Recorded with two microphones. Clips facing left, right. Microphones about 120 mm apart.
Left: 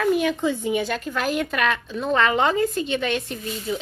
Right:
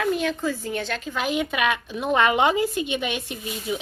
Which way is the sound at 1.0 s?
5° right (ahead or behind).